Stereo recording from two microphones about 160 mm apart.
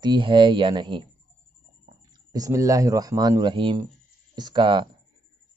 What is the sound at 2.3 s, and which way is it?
Speech, 20° right (ahead or behind).